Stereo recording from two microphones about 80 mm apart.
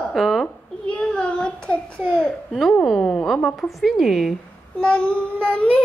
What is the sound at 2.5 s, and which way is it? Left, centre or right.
Speech, centre.